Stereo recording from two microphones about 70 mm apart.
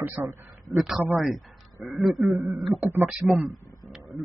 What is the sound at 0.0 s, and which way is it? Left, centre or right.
Speech, right.